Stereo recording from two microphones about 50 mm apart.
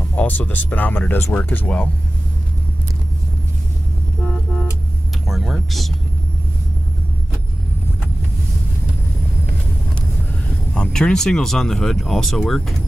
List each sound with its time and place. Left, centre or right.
0.1 s speech: left
1.3 s speech: left
4.2 s vehicle: centre
5.2 s speech: centre
10.7 s speech: centre